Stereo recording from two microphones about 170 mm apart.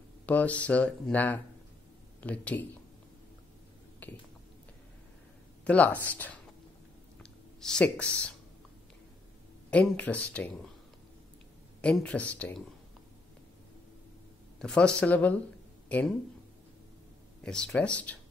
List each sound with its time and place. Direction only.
0.3 s speech: 10° left (ahead or behind)
4.0 s a sound: 10° left (ahead or behind)
5.7 s speech: 10° left (ahead or behind)
7.6 s speech: 5° left (ahead or behind)
9.7 s speech: 10° left (ahead or behind)
11.8 s speech: 5° left (ahead or behind)
14.6 s speech: 5° left (ahead or behind)
17.4 s speech: 5° left (ahead or behind)